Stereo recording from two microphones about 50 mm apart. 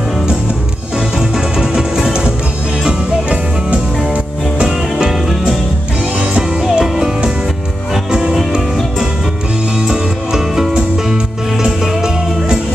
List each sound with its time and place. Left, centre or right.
0.9 s music: centre
4.6 s music: centre
6.7 s music: centre
8.1 s music: centre
9.8 s music: centre